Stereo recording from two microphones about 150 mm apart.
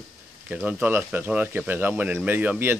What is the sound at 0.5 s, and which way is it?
Speech, 10° right (ahead or behind).